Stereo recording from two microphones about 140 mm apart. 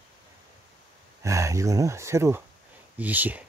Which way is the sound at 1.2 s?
20° right (ahead or behind).